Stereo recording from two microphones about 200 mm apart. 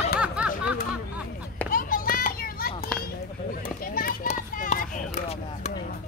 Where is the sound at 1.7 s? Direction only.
45° left (ahead or behind).